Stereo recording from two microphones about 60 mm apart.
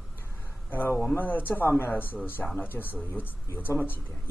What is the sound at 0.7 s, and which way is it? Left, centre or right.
A man's voice, left.